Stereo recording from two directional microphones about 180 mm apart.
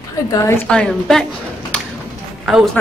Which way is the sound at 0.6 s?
5° left (ahead or behind).